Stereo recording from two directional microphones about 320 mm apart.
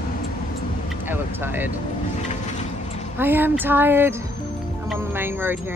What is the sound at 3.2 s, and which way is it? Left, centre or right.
Speech, centre.